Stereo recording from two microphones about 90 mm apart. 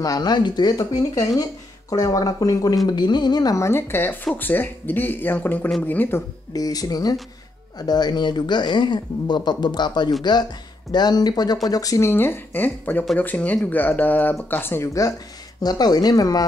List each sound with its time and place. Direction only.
0.0 s speech: 45° left (ahead or behind)
2.9 s speech: 55° left (ahead or behind)
3.5 s speech: 30° left (ahead or behind)
6.5 s speech: 45° left (ahead or behind)
12.1 s speech: 25° left (ahead or behind)
15.6 s speech: 50° left (ahead or behind)